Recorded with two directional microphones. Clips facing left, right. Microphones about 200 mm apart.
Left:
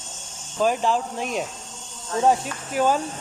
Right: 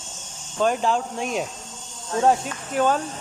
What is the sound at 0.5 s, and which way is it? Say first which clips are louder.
Speech: even; centre (ahead or behind).